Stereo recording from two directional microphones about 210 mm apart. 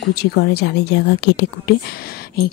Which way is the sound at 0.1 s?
50° left (ahead or behind).